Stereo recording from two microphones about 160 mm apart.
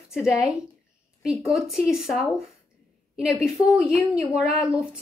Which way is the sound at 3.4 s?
5° right (ahead or behind).